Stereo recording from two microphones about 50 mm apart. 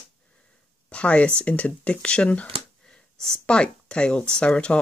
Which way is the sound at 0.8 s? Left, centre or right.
Left.